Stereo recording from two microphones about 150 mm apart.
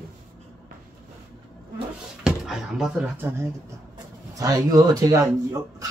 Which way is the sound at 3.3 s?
10° right (ahead or behind).